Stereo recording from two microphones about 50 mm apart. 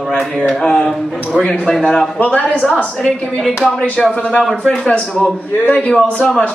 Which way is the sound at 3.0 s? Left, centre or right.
Centre.